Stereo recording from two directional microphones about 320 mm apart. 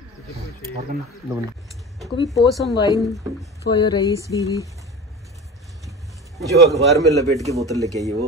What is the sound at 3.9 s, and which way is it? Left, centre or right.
Speech, centre.